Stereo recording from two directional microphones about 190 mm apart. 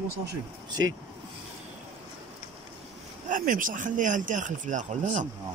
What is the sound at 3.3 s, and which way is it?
Speech, 45° right (ahead or behind).